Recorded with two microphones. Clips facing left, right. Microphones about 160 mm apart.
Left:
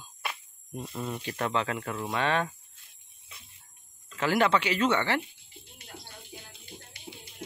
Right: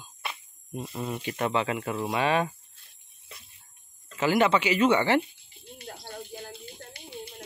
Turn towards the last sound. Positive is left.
turn(degrees=-50)  # may be behind; listen again after turning